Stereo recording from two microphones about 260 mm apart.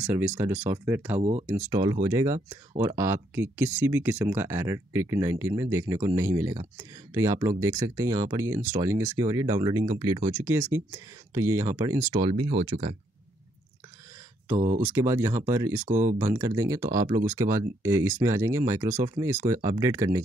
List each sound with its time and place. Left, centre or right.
0.0 s speech: centre
14.7 s speech: centre
15.8 s speech: right
16.2 s speech: centre